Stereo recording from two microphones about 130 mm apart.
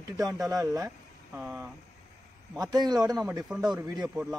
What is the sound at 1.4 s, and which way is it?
Speech, 10° right (ahead or behind).